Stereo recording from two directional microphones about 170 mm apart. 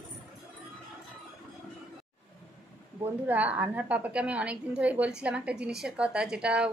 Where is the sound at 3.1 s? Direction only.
10° right (ahead or behind).